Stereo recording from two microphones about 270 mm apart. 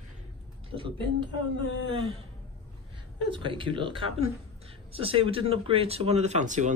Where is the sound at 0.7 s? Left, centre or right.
Centre.